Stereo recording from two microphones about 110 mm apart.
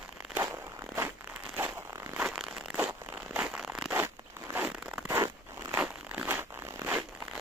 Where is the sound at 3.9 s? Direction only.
20° right (ahead or behind).